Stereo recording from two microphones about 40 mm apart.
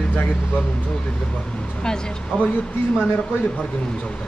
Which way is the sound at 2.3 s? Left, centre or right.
Left.